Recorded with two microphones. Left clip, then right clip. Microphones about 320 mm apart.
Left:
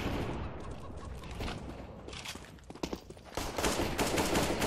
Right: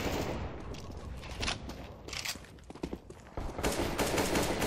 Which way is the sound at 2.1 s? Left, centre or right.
Centre.